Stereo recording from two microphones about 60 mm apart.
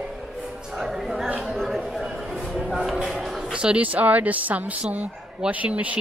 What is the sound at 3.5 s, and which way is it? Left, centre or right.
Speech, centre.